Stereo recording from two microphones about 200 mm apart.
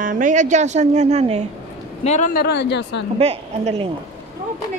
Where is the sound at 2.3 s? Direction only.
55° left (ahead or behind).